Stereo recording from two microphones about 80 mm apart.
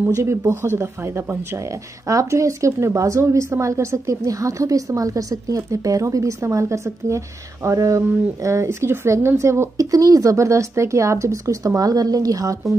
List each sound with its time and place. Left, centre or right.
0.1 s speech: right
2.0 s speech: right
4.2 s a woman's voice: right